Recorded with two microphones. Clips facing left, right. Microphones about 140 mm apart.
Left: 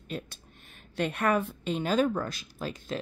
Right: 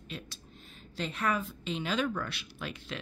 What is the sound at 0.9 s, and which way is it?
A woman's voice, 60° left (ahead or behind).